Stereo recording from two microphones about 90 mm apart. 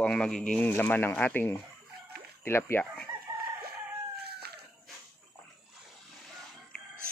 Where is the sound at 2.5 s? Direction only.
25° left (ahead or behind).